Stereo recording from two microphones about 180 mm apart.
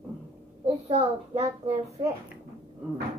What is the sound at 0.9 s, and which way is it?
A child's voice, 35° right (ahead or behind).